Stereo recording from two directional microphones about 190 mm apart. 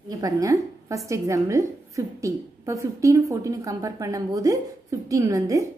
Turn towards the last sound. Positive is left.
turn(degrees=-15)  # may be behind; listen again after turning